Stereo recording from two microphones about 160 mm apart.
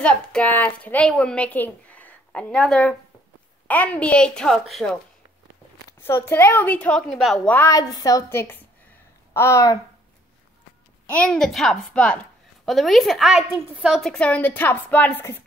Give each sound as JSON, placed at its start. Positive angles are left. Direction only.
{"t": 0.0, "sound": "a woman's voice", "side_deg": 5}
{"t": 6.0, "sound": "a woman's voice", "side_deg": 15}
{"t": 7.5, "sound": "a woman's voice", "side_deg": 20}
{"t": 11.1, "sound": "a woman's voice", "side_deg": 5}